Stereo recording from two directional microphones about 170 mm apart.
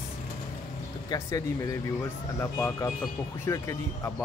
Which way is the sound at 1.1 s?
20° left (ahead or behind).